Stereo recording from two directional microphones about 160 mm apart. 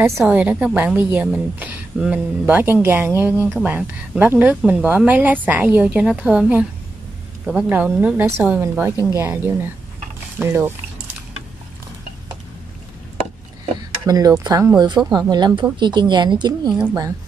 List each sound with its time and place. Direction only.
0.2 s a woman's voice: 10° right (ahead or behind)
3.4 s speech: centre (ahead or behind)
3.7 s a woman's voice: 15° right (ahead or behind)
14.0 s a woman's voice: 20° right (ahead or behind)